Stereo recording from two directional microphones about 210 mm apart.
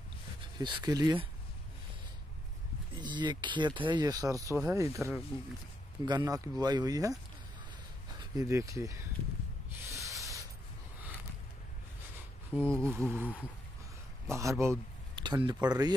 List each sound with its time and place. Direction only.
0.6 s speech: 20° right (ahead or behind)
3.0 s speech: 20° right (ahead or behind)
8.2 s speech: 15° right (ahead or behind)
9.8 s a sound: 15° right (ahead or behind)
12.6 s speech: 5° left (ahead or behind)
13.1 s speech: 10° right (ahead or behind)